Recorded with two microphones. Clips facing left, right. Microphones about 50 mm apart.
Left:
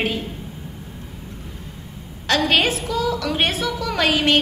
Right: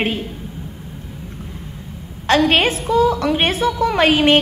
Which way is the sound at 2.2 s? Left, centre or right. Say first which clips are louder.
Right 4 dB; right.